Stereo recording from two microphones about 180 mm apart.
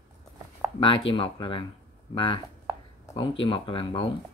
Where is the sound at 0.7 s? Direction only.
30° left (ahead or behind).